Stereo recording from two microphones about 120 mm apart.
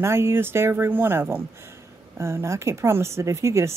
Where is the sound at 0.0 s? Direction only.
20° right (ahead or behind).